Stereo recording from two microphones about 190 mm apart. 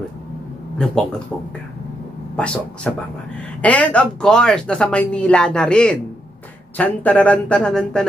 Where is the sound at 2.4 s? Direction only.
5° left (ahead or behind).